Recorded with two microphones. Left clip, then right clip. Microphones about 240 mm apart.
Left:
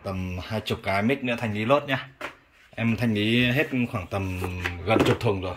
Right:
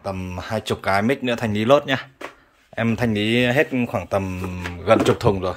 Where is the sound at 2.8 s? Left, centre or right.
Centre.